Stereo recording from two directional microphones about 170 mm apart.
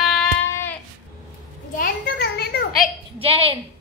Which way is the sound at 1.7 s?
60° left (ahead or behind).